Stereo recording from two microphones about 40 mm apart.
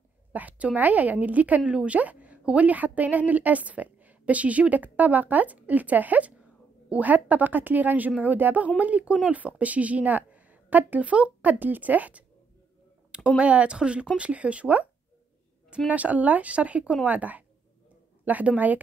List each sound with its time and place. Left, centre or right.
0.3 s a woman's voice: right
1.6 s a woman's voice: right
8.6 s a woman's voice: right
11.6 s a woman's voice: right
13.4 s a woman's voice: right
15.9 s a woman's voice: right